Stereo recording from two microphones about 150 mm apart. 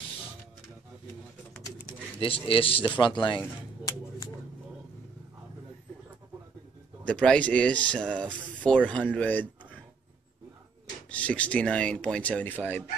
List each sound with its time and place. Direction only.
2.1 s a man's voice: 35° left (ahead or behind)
7.1 s speech: 5° left (ahead or behind)
11.1 s speech: 10° left (ahead or behind)